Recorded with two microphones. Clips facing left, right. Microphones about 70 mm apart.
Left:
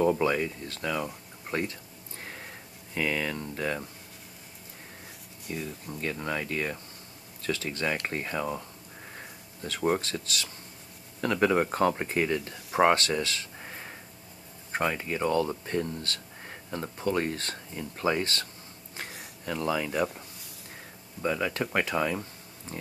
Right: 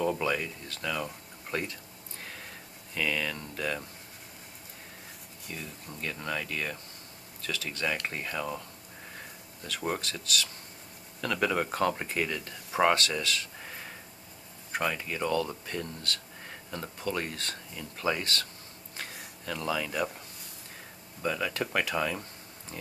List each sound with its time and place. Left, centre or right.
0.0 s speech: left
1.5 s a sound: left
2.9 s speech: left
5.5 s speech: centre
6.1 s speech: left
9.9 s speech: left
21.2 s speech: centre